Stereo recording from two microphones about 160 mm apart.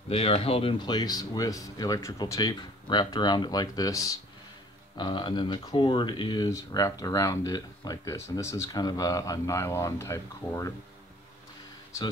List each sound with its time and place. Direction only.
0.1 s speech: 40° left (ahead or behind); by 10.7 s 20° left (ahead or behind)